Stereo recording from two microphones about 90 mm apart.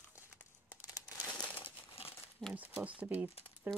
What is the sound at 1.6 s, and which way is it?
Crumpling, 90° left.